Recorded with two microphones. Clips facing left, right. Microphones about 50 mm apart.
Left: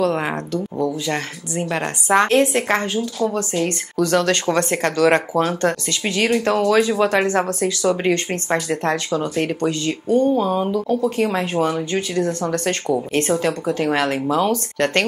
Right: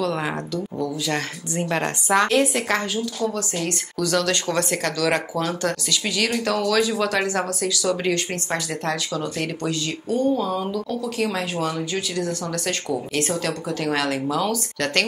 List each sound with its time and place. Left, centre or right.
0.0 s a sound: left
0.7 s speech: centre
2.0 s a woman's voice: left